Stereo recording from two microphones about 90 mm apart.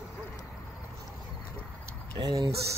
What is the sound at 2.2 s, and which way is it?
Speech, 50° right (ahead or behind).